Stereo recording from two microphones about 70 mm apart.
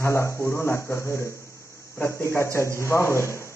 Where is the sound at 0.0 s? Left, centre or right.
Left.